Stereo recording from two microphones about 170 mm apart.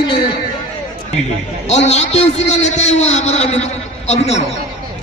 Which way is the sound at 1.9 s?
40° left (ahead or behind).